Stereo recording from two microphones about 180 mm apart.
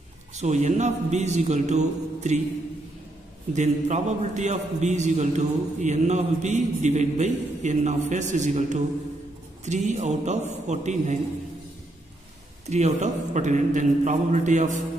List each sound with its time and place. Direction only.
0.4 s a man's voice: 40° right (ahead or behind)
3.5 s a man's voice: 40° right (ahead or behind)
12.6 s a man's voice: 40° right (ahead or behind)